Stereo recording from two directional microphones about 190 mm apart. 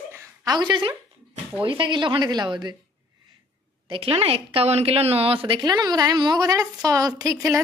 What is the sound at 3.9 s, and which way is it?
A woman's voice, 30° right (ahead or behind).